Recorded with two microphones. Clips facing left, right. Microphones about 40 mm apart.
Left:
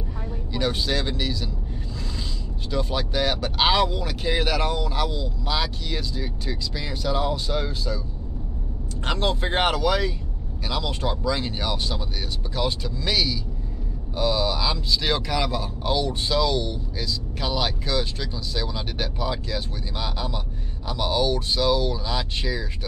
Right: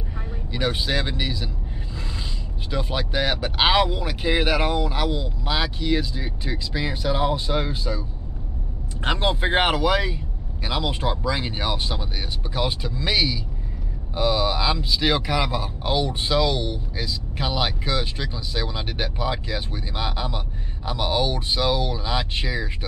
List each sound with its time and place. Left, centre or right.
0.5 s speech: centre
2.7 s a man's voice: centre
9.0 s a man's voice: right